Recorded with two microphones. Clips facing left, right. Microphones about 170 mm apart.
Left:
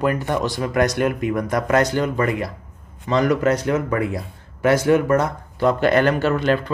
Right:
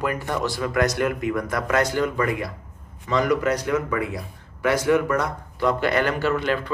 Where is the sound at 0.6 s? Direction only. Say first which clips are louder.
Left 2 dB; 30° left (ahead or behind).